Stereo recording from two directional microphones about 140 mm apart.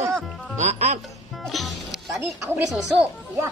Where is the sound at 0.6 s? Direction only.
55° right (ahead or behind).